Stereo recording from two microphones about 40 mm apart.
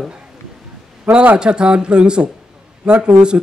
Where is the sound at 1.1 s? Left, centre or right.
Right.